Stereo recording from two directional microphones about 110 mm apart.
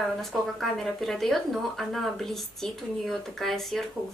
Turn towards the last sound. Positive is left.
turn(degrees=0)  # may be behind; listen again after turning